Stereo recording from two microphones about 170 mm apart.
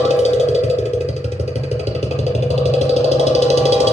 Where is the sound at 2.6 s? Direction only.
40° left (ahead or behind).